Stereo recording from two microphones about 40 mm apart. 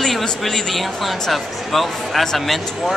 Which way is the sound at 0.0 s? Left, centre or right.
Centre.